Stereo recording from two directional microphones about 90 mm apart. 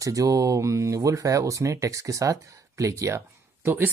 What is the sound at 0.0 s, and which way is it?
Speech, 40° right (ahead or behind).